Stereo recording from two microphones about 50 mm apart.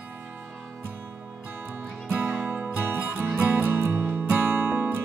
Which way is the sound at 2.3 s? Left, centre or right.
Centre.